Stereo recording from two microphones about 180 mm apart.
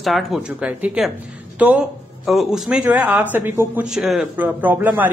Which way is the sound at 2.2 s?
Centre (ahead or behind).